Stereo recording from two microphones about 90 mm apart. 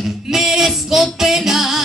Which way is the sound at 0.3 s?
5° right (ahead or behind).